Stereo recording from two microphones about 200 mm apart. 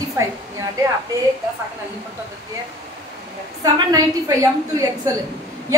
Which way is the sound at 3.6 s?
15° right (ahead or behind).